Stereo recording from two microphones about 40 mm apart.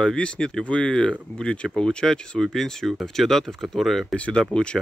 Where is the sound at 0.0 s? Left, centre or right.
Left; by 4.1 s centre.